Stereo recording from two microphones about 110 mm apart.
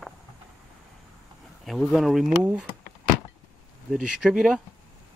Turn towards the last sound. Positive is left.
turn(degrees=-5)  # may be behind; listen again after turning